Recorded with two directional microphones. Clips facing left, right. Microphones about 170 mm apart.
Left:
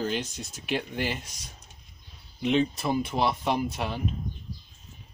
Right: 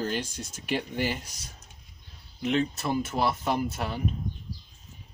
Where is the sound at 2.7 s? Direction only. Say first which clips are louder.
Left 1 dB; centre (ahead or behind).